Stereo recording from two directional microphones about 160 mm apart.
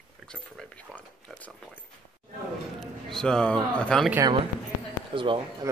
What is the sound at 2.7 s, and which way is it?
A man's voice, 5° left (ahead or behind).